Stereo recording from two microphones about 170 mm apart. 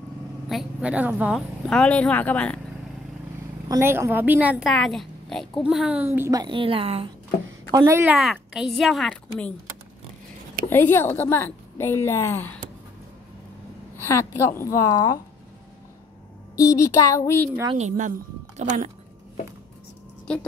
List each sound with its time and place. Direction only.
0.5 s a woman's voice: 5° right (ahead or behind)
1.7 s a woman's voice: 5° left (ahead or behind)
3.6 s a woman's voice: 20° right (ahead or behind); by 7.1 s 35° right (ahead or behind)
7.7 s a woman's voice: 15° right (ahead or behind)
8.2 s speech: centre (ahead or behind)
10.7 s a woman's voice: 15° left (ahead or behind)
14.0 s a woman's voice: 15° left (ahead or behind)
16.5 s a woman's voice: 20° left (ahead or behind)
17.7 s speech: 45° right (ahead or behind)